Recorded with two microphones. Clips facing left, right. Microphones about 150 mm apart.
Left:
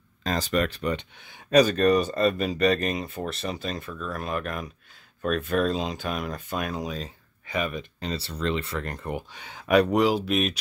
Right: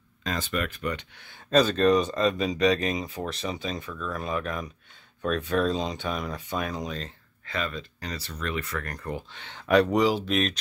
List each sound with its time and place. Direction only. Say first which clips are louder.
0.2 s speech: left 4 dB; 35° left (ahead or behind)
1.5 s speech: left 1 dB; 10° left (ahead or behind)